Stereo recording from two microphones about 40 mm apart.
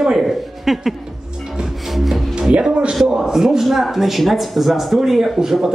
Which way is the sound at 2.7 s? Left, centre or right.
Right.